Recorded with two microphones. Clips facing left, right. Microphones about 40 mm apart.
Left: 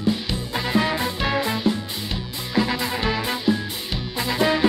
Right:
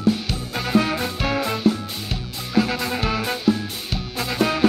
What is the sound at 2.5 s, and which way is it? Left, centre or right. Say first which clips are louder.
Music: right 1 dB; centre.